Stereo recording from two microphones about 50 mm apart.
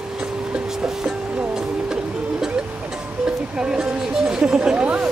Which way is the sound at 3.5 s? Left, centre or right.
Centre.